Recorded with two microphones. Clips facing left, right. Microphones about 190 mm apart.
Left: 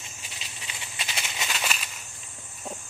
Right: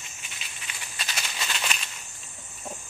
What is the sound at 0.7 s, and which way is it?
Maraca, 20° left (ahead or behind).